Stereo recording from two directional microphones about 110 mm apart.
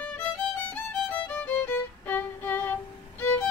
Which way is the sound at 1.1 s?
15° left (ahead or behind).